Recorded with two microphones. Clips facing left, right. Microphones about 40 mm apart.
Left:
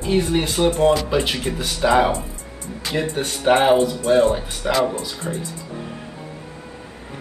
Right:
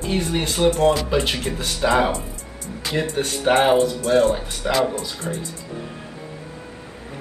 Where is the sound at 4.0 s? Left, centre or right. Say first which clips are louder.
Left 1 dB; centre.